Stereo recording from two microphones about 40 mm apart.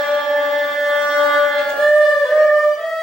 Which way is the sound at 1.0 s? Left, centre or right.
Centre.